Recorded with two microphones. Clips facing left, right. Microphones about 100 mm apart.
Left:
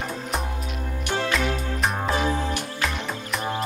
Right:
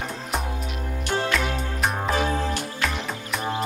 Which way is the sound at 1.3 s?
Centre (ahead or behind).